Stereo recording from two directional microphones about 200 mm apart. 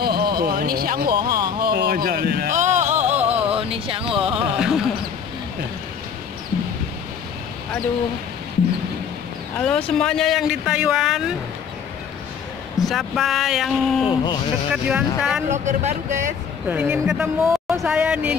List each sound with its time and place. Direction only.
0.0 s a sound: 50° right (ahead or behind)
2.5 s music: 35° right (ahead or behind)
9.6 s speech: 5° left (ahead or behind)
12.7 s speech: centre (ahead or behind)
14.0 s speech: 20° left (ahead or behind)
14.7 s speech: 5° right (ahead or behind)
15.5 s speech: 35° right (ahead or behind)
16.6 s speech: 5° right (ahead or behind)